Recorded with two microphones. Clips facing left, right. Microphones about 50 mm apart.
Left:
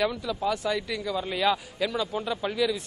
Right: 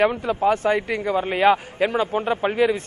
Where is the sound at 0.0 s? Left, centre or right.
Right.